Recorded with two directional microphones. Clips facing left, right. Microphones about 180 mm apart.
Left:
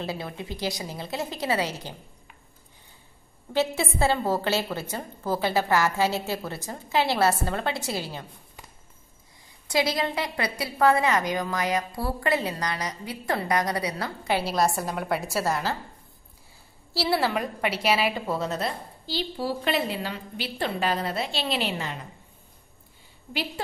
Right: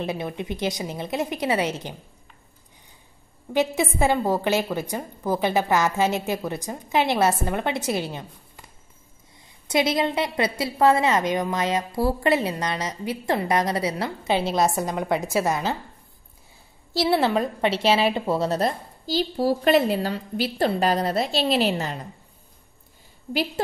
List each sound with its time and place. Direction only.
0.0 s a woman's voice: 20° right (ahead or behind)
3.5 s a woman's voice: 15° right (ahead or behind)
9.7 s a woman's voice: 20° right (ahead or behind)
14.8 s a woman's voice: centre (ahead or behind)
15.4 s a woman's voice: 20° right (ahead or behind)
16.9 s a woman's voice: 20° right (ahead or behind); by 22.0 s 40° right (ahead or behind)